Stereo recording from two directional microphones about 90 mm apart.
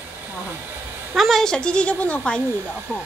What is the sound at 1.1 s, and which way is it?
Speech, centre (ahead or behind).